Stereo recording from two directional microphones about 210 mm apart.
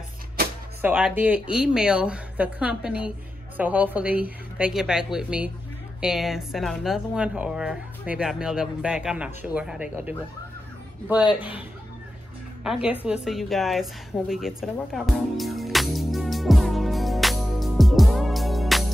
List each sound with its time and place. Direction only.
0.8 s speech: 5° right (ahead or behind)
12.6 s a woman's voice: 5° right (ahead or behind)